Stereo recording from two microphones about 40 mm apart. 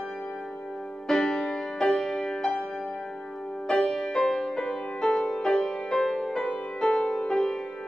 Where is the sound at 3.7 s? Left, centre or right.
Centre.